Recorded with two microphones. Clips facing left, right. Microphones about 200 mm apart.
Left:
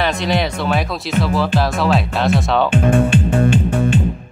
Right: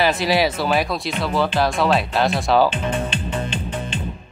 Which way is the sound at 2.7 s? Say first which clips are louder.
Left 10 dB; 50° left (ahead or behind).